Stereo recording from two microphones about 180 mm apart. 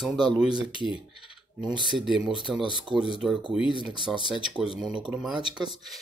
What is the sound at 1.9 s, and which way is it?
Speech, centre (ahead or behind).